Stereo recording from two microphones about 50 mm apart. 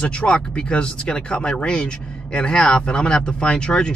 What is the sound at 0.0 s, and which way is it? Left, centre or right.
Speech, centre.